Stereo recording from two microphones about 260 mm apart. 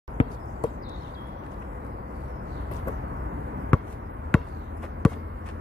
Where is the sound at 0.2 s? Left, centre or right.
Centre.